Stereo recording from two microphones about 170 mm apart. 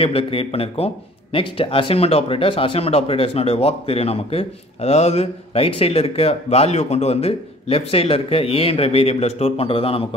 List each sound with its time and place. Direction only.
0.0 s speech: 35° left (ahead or behind)